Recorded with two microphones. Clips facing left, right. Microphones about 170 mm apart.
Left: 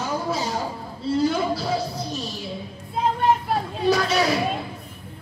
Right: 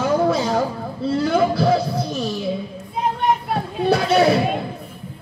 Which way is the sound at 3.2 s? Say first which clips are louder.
Right 1 dB; 60° right (ahead or behind).